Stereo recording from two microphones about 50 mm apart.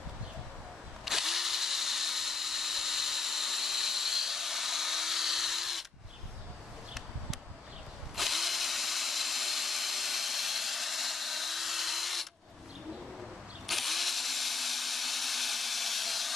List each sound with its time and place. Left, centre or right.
1.0 s drill: centre
8.2 s drill: centre
13.7 s drill: centre